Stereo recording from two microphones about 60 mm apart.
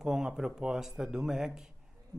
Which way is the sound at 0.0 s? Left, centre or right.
Centre.